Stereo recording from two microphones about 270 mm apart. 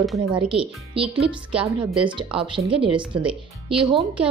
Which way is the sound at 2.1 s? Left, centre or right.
Centre.